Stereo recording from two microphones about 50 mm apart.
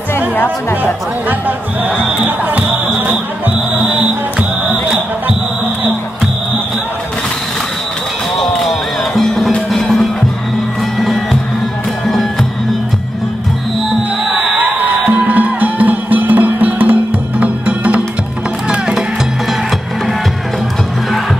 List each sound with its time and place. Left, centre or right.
2.2 s speech: right
3.7 s music: right
8.4 s music: centre
12.1 s music: centre
14.6 s music: right; by 19.0 s centre